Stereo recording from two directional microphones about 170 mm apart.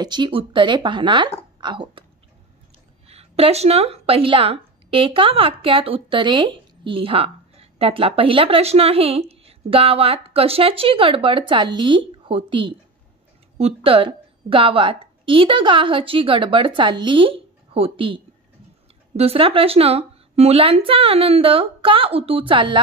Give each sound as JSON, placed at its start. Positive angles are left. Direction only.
{"t": 0.0, "sound": "a woman's voice", "side_deg": -25}
{"t": 3.1, "sound": "speech", "side_deg": -35}
{"t": 13.8, "sound": "a woman's voice", "side_deg": -30}